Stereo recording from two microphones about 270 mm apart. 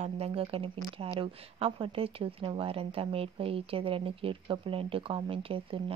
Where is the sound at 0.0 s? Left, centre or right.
Right.